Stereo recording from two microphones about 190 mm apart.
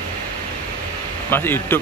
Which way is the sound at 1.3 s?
10° left (ahead or behind).